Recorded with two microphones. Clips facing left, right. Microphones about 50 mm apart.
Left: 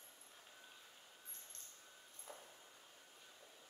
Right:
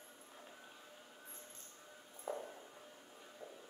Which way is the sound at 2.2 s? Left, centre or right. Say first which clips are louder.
Right 14 dB; right.